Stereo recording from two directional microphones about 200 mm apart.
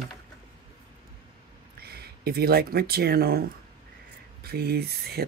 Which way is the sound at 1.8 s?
50° right (ahead or behind).